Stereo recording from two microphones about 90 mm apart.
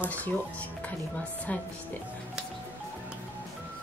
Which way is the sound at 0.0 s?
15° left (ahead or behind).